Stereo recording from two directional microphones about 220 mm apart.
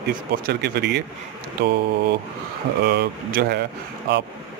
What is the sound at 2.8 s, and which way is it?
Speech, 45° right (ahead or behind).